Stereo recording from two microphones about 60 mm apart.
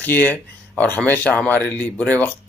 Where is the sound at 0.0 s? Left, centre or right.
Left.